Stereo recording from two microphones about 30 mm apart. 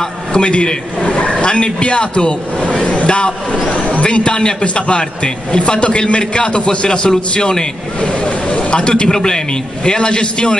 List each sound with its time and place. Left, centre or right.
0.4 s a man's voice: left